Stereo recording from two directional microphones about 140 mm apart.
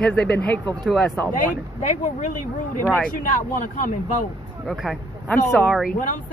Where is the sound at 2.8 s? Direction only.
10° left (ahead or behind).